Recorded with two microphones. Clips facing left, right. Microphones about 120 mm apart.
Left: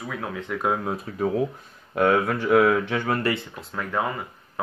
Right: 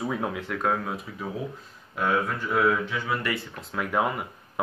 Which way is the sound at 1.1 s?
65° left (ahead or behind).